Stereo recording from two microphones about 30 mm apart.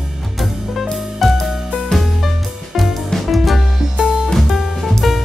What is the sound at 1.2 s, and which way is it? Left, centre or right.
Music, centre.